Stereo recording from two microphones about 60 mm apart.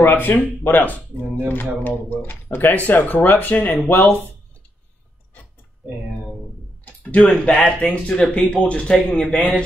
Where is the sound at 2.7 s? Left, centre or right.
Left.